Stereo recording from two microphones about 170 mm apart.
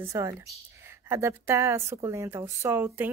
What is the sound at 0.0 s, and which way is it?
A woman's voice, 15° right (ahead or behind).